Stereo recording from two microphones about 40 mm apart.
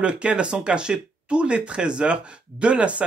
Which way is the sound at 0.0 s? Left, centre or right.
Right.